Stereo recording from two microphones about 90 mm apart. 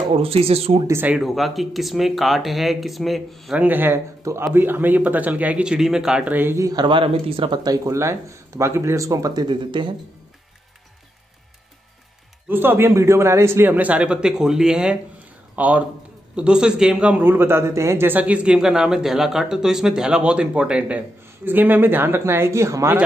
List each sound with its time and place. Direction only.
0.1 s speech: 90° right
1.2 s speech: centre (ahead or behind)
3.5 s a man's voice: 20° right (ahead or behind)
4.2 s a man's voice: 35° right (ahead or behind)
4.6 s speech: 25° right (ahead or behind)
6.3 s a man's voice: 25° right (ahead or behind)
6.6 s speech: 45° right (ahead or behind)
6.9 s speech: 80° right
7.6 s speech: 40° right (ahead or behind)
9.7 s speech: 60° right (ahead or behind)
12.4 s a man's voice: 25° right (ahead or behind)
17.2 s a man's voice: 25° right (ahead or behind)